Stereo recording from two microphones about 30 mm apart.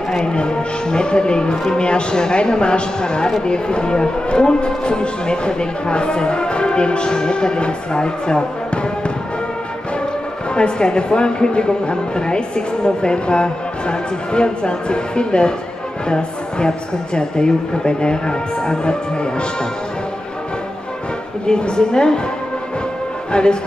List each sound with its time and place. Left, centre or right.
0.2 s a woman's voice: left
10.5 s a woman's voice: left
21.5 s speech: left
23.3 s speech: left